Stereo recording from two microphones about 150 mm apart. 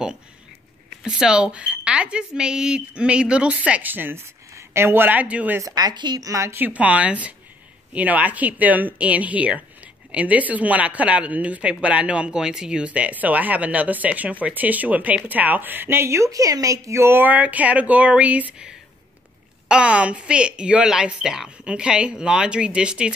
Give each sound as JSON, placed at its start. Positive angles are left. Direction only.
{"t": 1.0, "sound": "speech", "side_deg": -5}
{"t": 5.6, "sound": "speech", "side_deg": -25}